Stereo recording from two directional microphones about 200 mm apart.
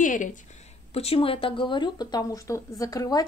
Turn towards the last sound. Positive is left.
turn(degrees=20)  # may be behind; listen again after turning